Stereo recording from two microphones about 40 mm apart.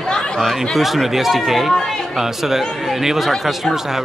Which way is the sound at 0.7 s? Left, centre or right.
Centre.